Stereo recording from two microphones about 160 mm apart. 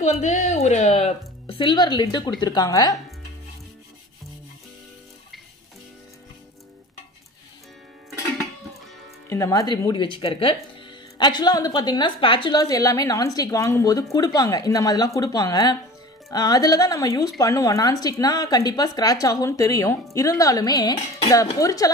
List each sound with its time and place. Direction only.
0.0 s a woman's voice: 45° left (ahead or behind); by 3.0 s 20° left (ahead or behind)
9.3 s speech: 20° left (ahead or behind)